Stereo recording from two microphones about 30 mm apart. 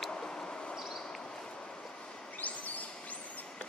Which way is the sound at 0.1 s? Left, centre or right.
Left.